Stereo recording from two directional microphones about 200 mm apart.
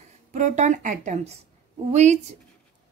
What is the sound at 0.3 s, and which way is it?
Speech, 35° right (ahead or behind).